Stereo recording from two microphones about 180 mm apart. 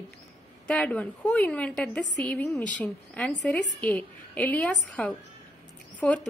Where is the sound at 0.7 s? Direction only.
5° left (ahead or behind).